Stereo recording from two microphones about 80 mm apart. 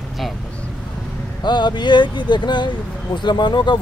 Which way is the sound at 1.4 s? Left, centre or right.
Left.